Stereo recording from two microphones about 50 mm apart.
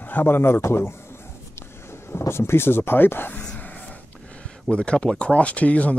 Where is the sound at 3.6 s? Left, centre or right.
Left.